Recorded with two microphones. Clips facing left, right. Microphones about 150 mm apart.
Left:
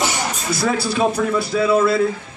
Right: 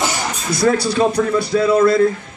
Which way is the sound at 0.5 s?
5° left (ahead or behind).